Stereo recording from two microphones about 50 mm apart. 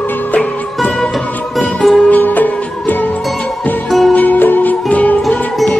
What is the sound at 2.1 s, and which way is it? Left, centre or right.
Music, left.